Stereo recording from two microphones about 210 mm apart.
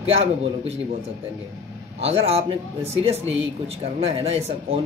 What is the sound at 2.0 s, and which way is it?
Speech, 30° right (ahead or behind).